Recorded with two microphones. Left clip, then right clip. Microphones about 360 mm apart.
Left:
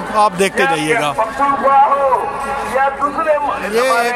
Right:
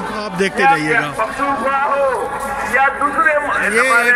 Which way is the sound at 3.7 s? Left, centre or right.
Centre.